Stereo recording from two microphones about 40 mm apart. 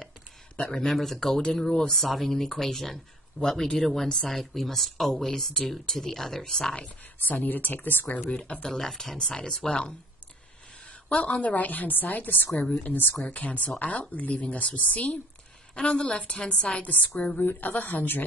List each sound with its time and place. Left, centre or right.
0.7 s speech: centre
7.2 s a woman's voice: left
8.3 s a woman's voice: left
8.6 s a woman's voice: centre
11.2 s a woman's voice: left
15.7 s a woman's voice: left
16.8 s a woman's voice: left